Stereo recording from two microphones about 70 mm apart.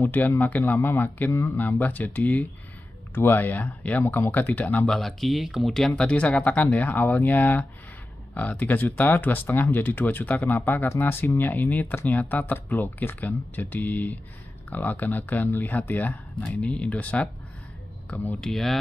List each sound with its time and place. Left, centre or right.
0.0 s speech: left
1.2 s speech: left
1.6 s speech: left
4.8 s speech: centre
18.4 s speech: centre